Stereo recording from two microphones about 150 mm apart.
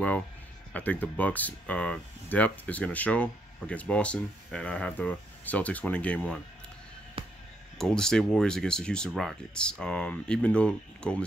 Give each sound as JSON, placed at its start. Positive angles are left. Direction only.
{"t": 0.7, "sound": "speech", "side_deg": 10}
{"t": 7.2, "sound": "music", "side_deg": -35}
{"t": 7.7, "sound": "speech", "side_deg": 5}